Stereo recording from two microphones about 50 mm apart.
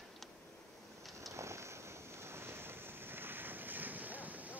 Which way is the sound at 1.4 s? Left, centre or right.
Right.